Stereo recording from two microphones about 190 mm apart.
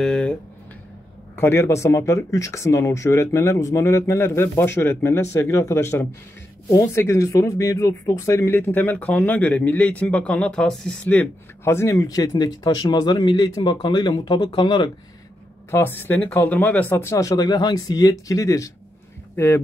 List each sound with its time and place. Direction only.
0.0 s a sound: 5° left (ahead or behind)
1.3 s speech: 15° left (ahead or behind)
15.7 s speech: 10° left (ahead or behind)